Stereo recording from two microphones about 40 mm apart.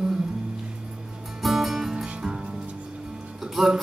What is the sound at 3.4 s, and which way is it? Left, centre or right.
Music, centre.